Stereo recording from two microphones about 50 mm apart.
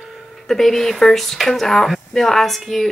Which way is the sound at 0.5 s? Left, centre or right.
Centre.